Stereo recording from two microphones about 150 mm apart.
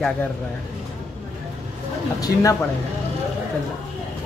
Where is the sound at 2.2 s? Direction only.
20° left (ahead or behind).